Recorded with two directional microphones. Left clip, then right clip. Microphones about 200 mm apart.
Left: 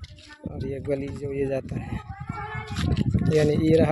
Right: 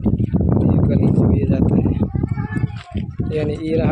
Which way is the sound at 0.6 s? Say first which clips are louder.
Right 4 dB; 5° left (ahead or behind).